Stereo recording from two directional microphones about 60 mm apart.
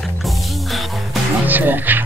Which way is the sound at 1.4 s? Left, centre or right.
Right.